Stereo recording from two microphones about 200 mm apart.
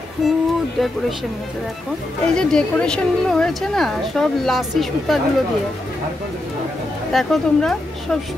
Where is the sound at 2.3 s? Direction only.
5° left (ahead or behind).